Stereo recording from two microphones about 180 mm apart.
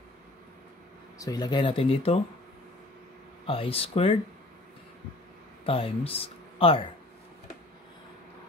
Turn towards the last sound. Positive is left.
turn(degrees=30)  # may be behind; listen again after turning